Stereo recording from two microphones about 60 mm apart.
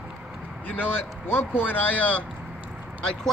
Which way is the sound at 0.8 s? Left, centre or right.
Left.